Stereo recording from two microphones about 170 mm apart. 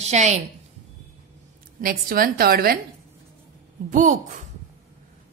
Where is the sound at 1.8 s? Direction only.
60° right (ahead or behind).